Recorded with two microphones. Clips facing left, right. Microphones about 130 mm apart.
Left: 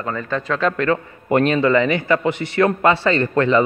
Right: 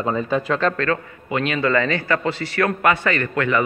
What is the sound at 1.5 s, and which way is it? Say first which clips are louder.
A man's voice: left 4 dB; 20° left (ahead or behind).